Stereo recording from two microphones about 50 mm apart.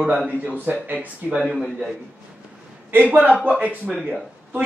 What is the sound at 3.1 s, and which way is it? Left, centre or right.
Speech, right.